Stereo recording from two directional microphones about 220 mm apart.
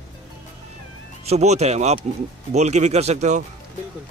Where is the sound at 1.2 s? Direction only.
30° right (ahead or behind).